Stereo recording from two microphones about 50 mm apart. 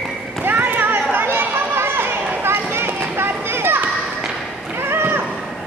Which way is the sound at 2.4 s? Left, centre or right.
Right.